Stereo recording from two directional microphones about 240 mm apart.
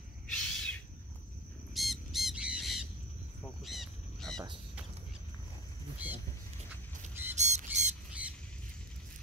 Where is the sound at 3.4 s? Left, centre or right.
Centre.